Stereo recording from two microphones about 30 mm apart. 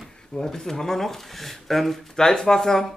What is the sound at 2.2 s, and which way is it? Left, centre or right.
Speech, centre.